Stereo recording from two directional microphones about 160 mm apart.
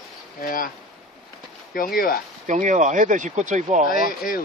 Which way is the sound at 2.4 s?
50° right (ahead or behind).